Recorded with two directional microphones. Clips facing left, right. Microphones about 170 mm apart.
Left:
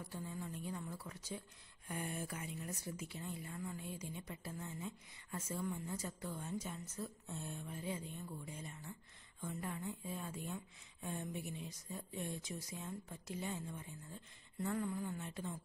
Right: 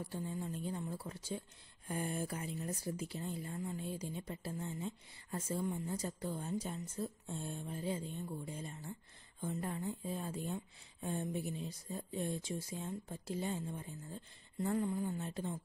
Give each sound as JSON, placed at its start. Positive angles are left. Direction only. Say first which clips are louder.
{"t": 0.0, "sound": "speech", "louder": "right 5 dB", "side_deg": -30}